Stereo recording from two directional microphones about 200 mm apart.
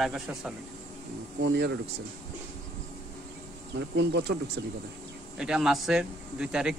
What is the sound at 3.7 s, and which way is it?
Speech, 60° right (ahead or behind).